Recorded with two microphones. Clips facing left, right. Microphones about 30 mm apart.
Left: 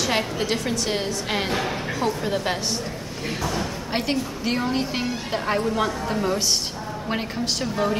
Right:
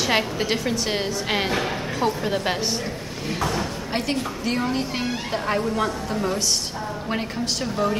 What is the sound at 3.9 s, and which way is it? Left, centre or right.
A woman's voice, centre.